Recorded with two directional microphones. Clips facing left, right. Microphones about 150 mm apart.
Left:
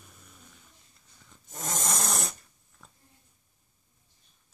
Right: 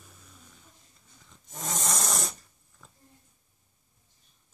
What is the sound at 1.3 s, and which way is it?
Snoring, centre (ahead or behind).